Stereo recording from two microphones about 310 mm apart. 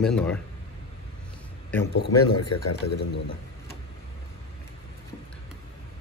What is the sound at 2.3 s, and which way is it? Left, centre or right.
Speech, left.